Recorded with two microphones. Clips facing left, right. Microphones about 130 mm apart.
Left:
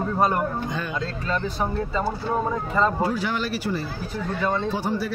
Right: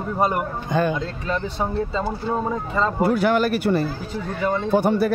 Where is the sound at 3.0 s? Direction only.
60° right (ahead or behind).